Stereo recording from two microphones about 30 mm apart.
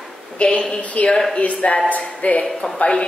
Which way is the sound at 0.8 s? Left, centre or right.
Left.